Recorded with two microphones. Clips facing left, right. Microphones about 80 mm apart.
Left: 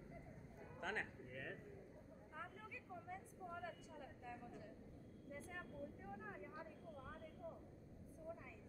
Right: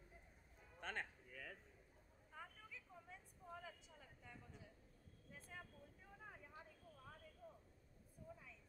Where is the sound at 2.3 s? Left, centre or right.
Centre.